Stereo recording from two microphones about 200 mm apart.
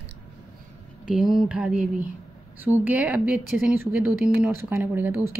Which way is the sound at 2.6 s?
10° right (ahead or behind).